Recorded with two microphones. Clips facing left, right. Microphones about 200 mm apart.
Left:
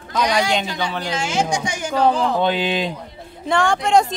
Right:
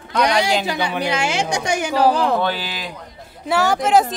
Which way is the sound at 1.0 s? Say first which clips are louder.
Left 1 dB; 65° right (ahead or behind).